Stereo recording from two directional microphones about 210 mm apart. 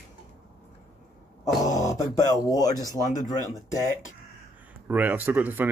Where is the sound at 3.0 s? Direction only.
40° left (ahead or behind).